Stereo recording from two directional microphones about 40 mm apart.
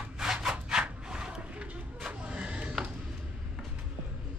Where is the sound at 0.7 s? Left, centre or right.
Centre.